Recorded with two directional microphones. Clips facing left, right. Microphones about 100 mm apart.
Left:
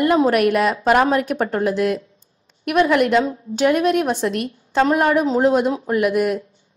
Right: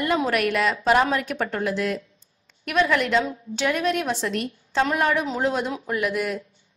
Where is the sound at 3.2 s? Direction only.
35° left (ahead or behind); by 4.9 s 50° left (ahead or behind).